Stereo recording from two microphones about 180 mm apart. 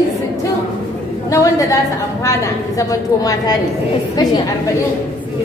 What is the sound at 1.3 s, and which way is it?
A woman's voice, 15° left (ahead or behind).